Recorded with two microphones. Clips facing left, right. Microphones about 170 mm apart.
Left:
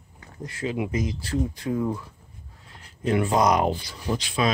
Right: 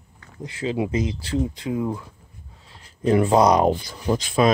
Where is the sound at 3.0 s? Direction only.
35° right (ahead or behind).